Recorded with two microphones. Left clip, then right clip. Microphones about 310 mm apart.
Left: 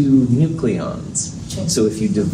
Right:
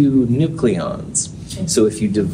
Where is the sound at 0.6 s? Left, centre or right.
Right.